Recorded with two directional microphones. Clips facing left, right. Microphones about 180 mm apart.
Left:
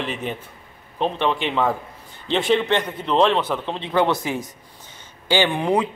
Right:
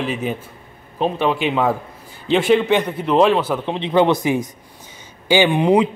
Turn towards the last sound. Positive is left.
turn(degrees=-15)  # may be behind; listen again after turning